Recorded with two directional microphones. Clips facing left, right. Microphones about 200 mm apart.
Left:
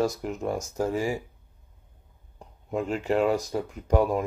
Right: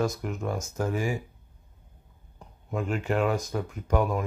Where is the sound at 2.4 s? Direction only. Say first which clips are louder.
Left 2 dB; 30° left (ahead or behind).